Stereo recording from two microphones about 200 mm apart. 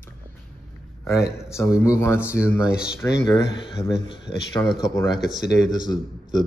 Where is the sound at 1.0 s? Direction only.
15° left (ahead or behind).